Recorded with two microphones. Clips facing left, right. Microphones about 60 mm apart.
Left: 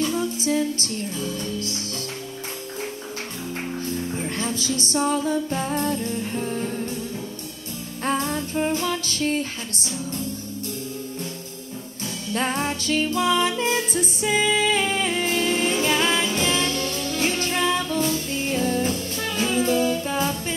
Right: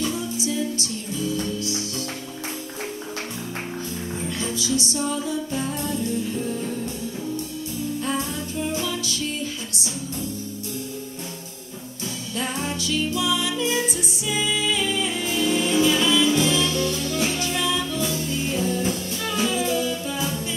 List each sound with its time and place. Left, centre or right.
0.4 s music: left
4.4 s music: left
8.0 s music: left
12.4 s music: left